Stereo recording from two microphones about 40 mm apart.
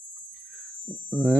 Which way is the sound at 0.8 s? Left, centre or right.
Right.